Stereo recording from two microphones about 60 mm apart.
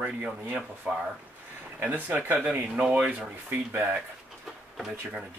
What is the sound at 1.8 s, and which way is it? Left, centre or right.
Speech, right.